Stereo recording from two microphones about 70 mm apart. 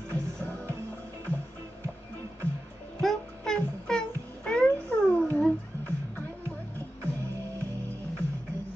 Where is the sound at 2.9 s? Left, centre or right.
Centre.